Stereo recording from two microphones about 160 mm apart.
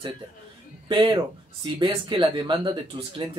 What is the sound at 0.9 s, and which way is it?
Speech, 30° right (ahead or behind).